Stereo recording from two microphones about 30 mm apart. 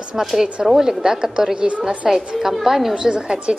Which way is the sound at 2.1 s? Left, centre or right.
Centre.